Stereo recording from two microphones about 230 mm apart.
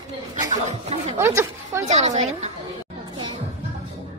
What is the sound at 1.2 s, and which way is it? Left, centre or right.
Speech, centre.